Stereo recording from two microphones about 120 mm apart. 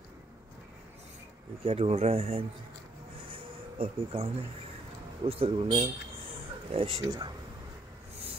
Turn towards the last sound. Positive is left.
turn(degrees=-50)  # may be behind; listen again after turning